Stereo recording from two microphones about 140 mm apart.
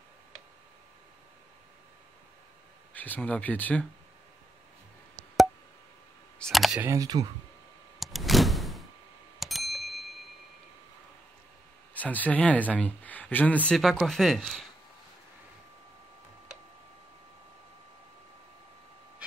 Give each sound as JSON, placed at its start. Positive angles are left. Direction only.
{"t": 2.9, "sound": "speech", "side_deg": 10}
{"t": 6.4, "sound": "camera", "side_deg": 0}
{"t": 6.8, "sound": "speech", "side_deg": -25}
{"t": 8.0, "sound": "door", "side_deg": 0}
{"t": 9.4, "sound": "ding", "side_deg": 0}
{"t": 11.9, "sound": "speech", "side_deg": 10}